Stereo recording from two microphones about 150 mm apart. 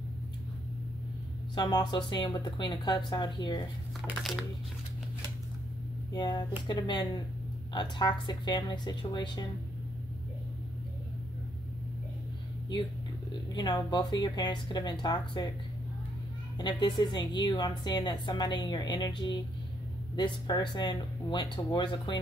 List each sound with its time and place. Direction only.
1.5 s a woman's voice: 30° left (ahead or behind)
4.2 s crumpling: centre (ahead or behind)
6.1 s a woman's voice: 30° left (ahead or behind)
13.5 s a woman's voice: 30° left (ahead or behind)
16.5 s a woman's voice: 30° left (ahead or behind)